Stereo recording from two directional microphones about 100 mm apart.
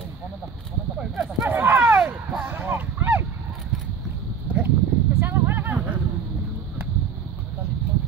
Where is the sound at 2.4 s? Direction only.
20° right (ahead or behind).